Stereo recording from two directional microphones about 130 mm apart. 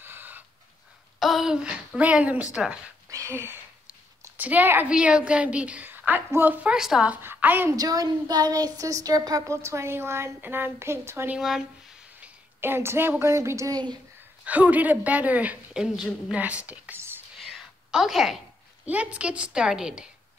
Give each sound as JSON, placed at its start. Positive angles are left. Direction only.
{"t": 0.0, "sound": "pant", "side_deg": -15}
{"t": 1.2, "sound": "speech", "side_deg": 0}
{"t": 3.3, "sound": "a woman's voice", "side_deg": -20}
{"t": 7.7, "sound": "speech", "side_deg": -30}
{"t": 11.3, "sound": "speech", "side_deg": -5}
{"t": 12.2, "sound": "a woman's voice", "side_deg": -15}
{"t": 14.4, "sound": "speech", "side_deg": -10}
{"t": 17.4, "sound": "a sound", "side_deg": 0}
{"t": 18.9, "sound": "speech", "side_deg": -10}